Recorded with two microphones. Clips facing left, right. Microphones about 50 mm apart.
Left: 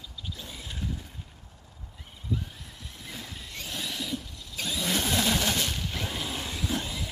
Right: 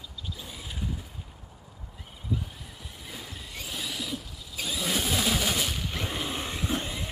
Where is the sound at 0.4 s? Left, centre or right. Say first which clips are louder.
Even; centre.